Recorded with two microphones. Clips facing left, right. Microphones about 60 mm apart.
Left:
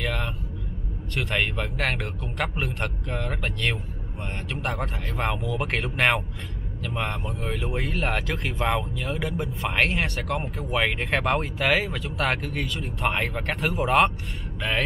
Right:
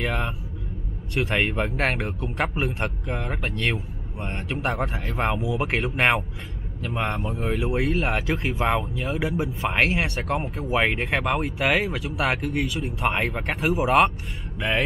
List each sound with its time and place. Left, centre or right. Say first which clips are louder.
0.0 s speech: right 2 dB; right
4.5 s speech: right 4 dB; right
7.3 s speech: right 4 dB; right
10.6 s speech: right 3 dB; right
11.1 s speech: even; centre